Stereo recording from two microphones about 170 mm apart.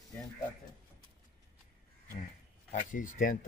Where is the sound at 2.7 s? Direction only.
50° left (ahead or behind).